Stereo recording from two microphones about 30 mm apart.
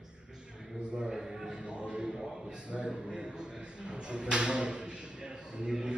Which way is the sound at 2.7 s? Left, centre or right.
Right.